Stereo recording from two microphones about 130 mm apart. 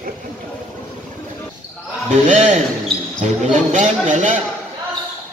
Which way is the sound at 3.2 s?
60° right (ahead or behind).